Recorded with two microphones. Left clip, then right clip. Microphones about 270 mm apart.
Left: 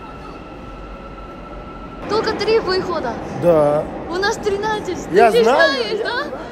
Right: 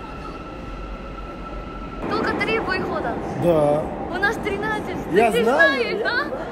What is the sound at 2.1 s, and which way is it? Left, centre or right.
Speech, centre.